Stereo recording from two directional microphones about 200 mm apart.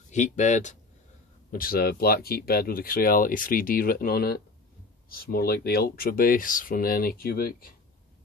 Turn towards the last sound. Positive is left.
turn(degrees=45)  # may be behind; listen again after turning